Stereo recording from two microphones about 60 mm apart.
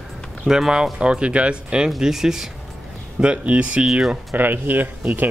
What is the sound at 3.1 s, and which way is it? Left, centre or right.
Speech, centre.